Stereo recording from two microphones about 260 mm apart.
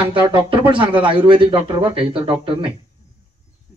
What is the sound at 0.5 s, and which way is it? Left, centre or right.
Speech, centre.